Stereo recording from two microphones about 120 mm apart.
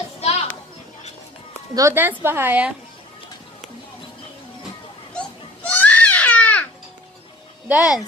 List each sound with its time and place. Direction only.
0.2 s children playing: 60° left (ahead or behind)
1.8 s a woman's voice: 20° right (ahead or behind)
5.7 s baby cry: 15° left (ahead or behind)
7.6 s speech: 10° right (ahead or behind)